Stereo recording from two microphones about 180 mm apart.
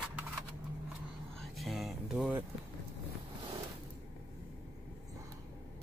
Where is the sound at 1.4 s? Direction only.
Centre (ahead or behind).